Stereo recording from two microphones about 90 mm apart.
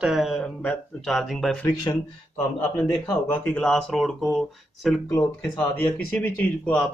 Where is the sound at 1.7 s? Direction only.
40° left (ahead or behind).